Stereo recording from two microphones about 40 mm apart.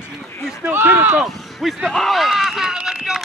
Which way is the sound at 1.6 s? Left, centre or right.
Centre.